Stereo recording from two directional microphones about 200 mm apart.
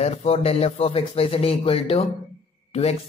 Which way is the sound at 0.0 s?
35° left (ahead or behind).